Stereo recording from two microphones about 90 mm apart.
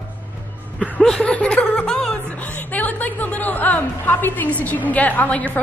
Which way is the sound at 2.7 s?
20° left (ahead or behind).